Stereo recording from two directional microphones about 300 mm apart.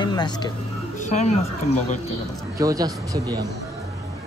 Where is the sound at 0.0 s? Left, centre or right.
Centre.